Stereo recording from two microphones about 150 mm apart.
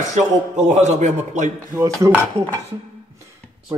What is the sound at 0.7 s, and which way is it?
Speech, 50° right (ahead or behind).